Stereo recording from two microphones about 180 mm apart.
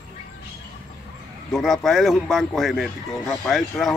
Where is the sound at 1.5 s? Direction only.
Centre (ahead or behind).